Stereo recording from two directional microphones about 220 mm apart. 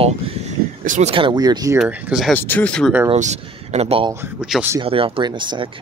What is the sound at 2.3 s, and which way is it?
Speech, 10° left (ahead or behind).